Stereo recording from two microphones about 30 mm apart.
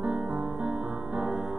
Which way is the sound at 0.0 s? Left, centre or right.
Centre.